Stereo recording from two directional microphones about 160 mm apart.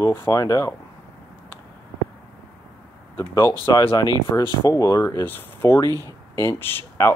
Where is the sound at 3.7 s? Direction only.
25° left (ahead or behind).